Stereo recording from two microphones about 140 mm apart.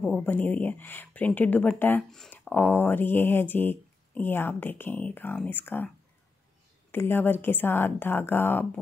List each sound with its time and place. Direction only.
0.0 s a woman's voice: 10° left (ahead or behind)
6.9 s a woman's voice: 15° left (ahead or behind)